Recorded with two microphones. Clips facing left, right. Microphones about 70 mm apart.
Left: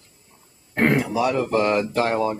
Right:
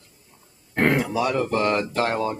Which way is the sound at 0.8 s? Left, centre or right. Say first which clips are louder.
Left 1 dB; centre.